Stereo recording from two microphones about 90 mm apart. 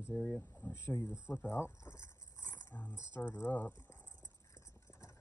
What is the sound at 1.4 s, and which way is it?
Speech, 25° left (ahead or behind).